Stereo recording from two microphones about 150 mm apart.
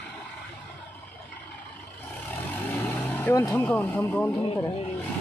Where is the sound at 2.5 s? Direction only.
10° left (ahead or behind).